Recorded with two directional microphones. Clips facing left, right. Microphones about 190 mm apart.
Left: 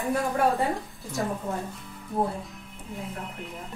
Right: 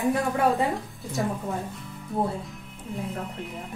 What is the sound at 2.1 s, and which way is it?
Speech, centre (ahead or behind).